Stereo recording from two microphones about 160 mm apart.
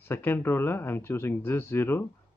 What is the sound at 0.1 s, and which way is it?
Speech, 15° left (ahead or behind).